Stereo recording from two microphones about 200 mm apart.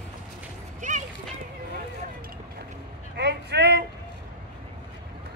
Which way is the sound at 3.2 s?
55° right (ahead or behind).